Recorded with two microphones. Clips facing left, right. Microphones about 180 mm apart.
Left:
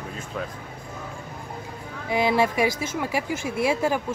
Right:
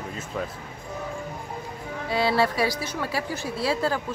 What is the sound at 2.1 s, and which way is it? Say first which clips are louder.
Speech: left 1 dB; 15° left (ahead or behind).